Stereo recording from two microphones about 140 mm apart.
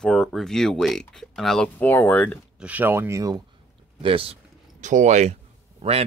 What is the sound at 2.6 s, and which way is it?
Speech, 15° right (ahead or behind).